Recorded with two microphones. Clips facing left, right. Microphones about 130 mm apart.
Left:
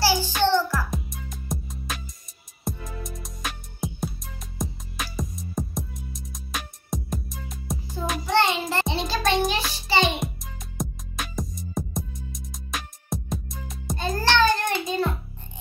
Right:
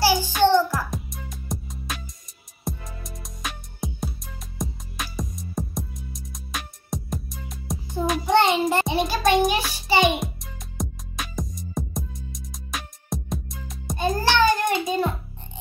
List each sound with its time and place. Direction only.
0.0 s music: 15° right (ahead or behind)
0.7 s music: centre (ahead or behind)
8.3 s child singing: 20° right (ahead or behind)
10.2 s music: centre (ahead or behind)
13.9 s child singing: 15° right (ahead or behind)